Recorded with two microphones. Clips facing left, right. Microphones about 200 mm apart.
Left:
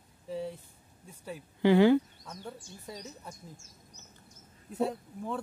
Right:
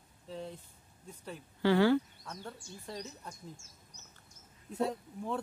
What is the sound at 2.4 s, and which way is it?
Speech, 5° left (ahead or behind).